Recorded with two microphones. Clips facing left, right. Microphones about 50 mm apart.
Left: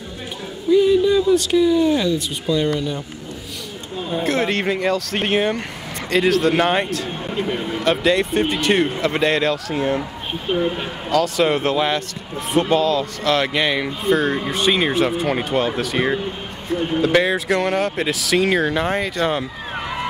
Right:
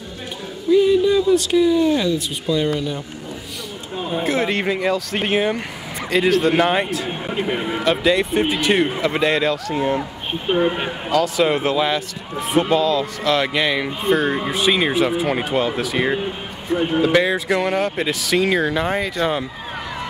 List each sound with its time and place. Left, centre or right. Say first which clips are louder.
0.7 s speech: even; centre
4.1 s speech: even; centre
7.1 s a man's voice: right 1 dB; centre
7.8 s speech: even; centre
10.4 s a man's voice: right 2 dB; right
11.1 s speech: even; centre
17.1 s speech: even; centre
19.7 s a sound: left 4 dB; centre